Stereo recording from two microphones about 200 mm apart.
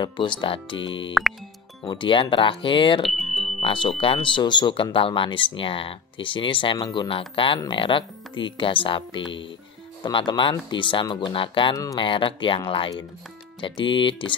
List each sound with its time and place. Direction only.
0.0 s speech: 25° left (ahead or behind)
3.1 s speech: centre (ahead or behind)
3.6 s speech: 25° left (ahead or behind)